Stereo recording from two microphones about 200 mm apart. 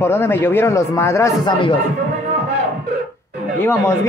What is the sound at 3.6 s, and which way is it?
Speech, 10° left (ahead or behind).